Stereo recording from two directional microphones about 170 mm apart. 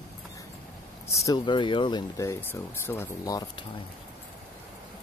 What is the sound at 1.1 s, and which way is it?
Speech, 20° left (ahead or behind).